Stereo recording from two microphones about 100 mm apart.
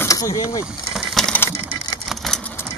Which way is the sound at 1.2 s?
5° left (ahead or behind).